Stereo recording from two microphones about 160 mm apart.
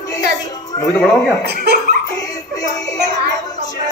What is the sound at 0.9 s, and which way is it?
Speech, centre (ahead or behind).